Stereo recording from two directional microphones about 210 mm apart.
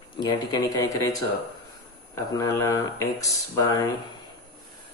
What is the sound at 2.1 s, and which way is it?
Speech, 15° left (ahead or behind).